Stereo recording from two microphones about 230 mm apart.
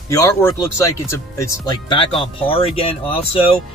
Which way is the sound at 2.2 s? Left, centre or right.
Left.